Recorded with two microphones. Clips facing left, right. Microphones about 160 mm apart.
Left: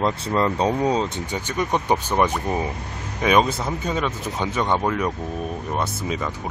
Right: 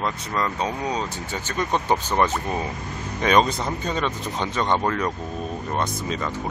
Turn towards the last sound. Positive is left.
turn(degrees=10)  # may be behind; listen again after turning